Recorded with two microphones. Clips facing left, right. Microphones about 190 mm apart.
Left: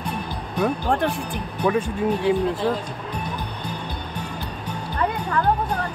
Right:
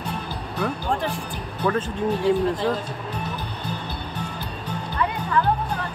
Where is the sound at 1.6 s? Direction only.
15° left (ahead or behind).